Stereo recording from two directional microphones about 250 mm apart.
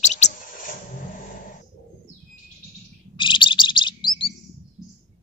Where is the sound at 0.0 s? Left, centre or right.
Left.